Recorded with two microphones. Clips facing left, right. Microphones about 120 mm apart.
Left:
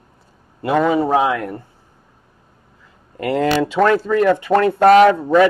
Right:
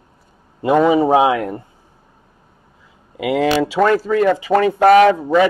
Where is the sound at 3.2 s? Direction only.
10° right (ahead or behind).